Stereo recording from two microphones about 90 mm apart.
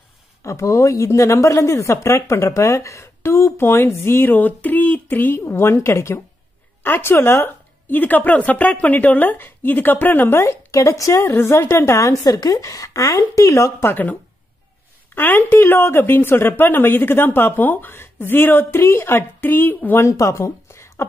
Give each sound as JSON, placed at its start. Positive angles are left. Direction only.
{"t": 0.4, "sound": "speech", "side_deg": 35}
{"t": 15.1, "sound": "speech", "side_deg": 20}
{"t": 20.1, "sound": "speech", "side_deg": 35}